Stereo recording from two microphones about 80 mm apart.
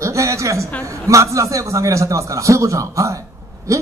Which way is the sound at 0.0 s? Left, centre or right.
Right.